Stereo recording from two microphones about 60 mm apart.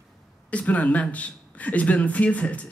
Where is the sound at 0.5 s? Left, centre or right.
Left.